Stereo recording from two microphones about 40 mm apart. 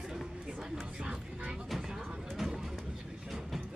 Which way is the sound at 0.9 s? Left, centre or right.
Right.